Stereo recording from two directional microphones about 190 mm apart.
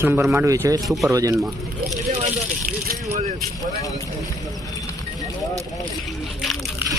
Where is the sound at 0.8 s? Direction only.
Centre (ahead or behind).